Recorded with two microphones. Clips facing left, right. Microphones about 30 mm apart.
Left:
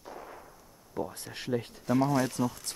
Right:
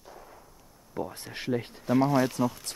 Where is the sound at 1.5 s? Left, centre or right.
Centre.